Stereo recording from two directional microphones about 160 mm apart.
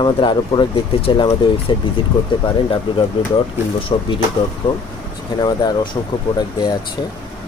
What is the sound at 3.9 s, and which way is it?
Speech, 30° left (ahead or behind).